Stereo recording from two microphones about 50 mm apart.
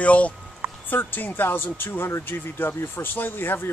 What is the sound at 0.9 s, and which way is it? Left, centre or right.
Speech, left.